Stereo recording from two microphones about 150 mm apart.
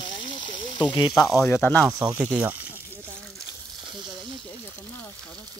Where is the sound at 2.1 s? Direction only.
10° right (ahead or behind).